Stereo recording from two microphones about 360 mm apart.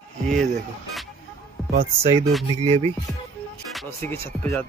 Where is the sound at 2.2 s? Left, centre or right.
Centre.